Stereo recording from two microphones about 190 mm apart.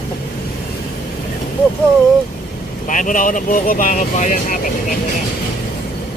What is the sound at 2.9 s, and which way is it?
Speech, 45° left (ahead or behind).